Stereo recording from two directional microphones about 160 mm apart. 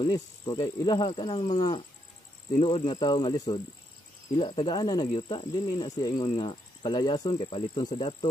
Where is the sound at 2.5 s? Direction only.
35° left (ahead or behind).